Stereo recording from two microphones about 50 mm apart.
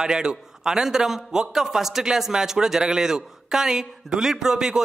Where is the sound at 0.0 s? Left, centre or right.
Centre.